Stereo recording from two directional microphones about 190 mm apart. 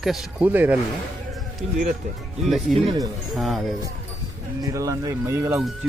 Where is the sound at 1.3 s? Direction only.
Centre (ahead or behind).